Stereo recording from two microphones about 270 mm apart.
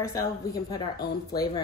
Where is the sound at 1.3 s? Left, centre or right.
Centre.